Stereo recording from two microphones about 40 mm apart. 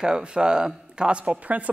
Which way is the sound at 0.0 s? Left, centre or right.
Right.